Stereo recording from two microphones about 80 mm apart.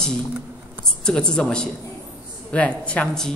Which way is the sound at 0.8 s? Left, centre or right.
Centre.